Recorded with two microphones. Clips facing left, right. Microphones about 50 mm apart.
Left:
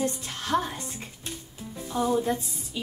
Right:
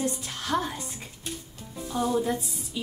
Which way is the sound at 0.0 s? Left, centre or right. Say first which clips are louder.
Left 1 dB; centre.